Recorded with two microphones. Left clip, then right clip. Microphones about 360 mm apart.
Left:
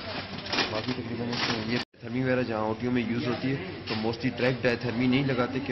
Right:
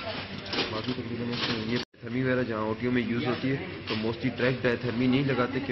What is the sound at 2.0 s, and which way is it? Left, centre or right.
A man's voice, centre.